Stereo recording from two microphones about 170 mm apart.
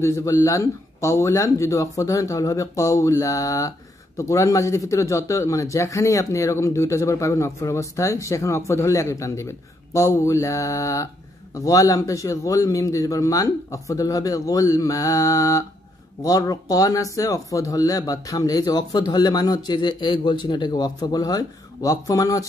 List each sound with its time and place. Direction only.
0.0 s speech: 15° left (ahead or behind)